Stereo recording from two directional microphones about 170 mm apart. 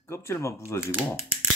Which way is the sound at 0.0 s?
15° left (ahead or behind).